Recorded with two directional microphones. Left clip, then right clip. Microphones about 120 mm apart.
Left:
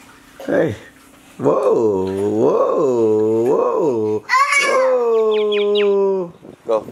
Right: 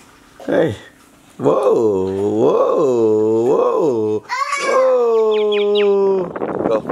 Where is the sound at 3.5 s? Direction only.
15° right (ahead or behind).